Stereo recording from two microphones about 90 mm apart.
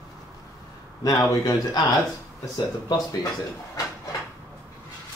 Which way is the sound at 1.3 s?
35° left (ahead or behind).